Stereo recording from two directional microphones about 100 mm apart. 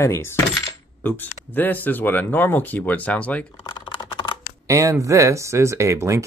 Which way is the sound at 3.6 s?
50° left (ahead or behind).